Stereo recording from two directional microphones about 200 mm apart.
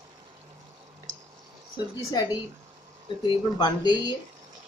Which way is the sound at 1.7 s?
20° left (ahead or behind).